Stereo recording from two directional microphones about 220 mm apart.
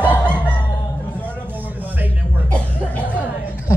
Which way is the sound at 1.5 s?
10° right (ahead or behind).